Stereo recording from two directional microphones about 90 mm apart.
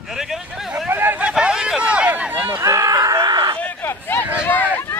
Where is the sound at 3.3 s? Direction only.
55° right (ahead or behind).